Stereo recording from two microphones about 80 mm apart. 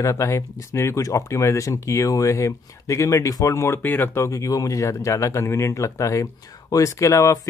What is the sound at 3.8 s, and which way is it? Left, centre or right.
Speech, left.